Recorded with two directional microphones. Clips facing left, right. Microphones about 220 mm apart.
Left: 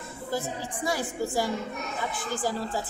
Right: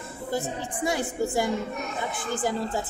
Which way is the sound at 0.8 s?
20° right (ahead or behind).